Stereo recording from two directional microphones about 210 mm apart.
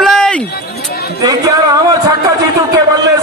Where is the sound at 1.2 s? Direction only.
15° right (ahead or behind).